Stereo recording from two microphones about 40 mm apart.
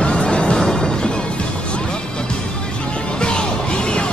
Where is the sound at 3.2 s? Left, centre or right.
Left.